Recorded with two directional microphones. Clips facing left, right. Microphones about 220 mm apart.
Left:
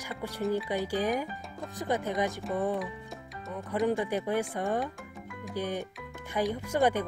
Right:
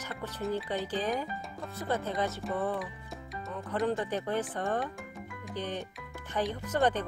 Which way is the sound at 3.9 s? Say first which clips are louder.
Left 2 dB; 10° left (ahead or behind).